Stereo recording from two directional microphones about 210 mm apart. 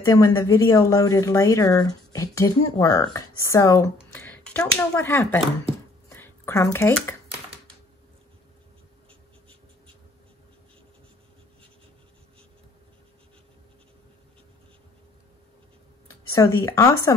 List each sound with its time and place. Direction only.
0.0 s speech: 15° left (ahead or behind)
6.0 s a sound: 10° left (ahead or behind)
16.3 s speech: 15° left (ahead or behind)